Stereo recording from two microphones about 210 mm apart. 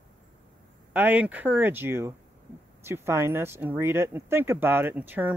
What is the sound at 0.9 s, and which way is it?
Speech, 5° right (ahead or behind).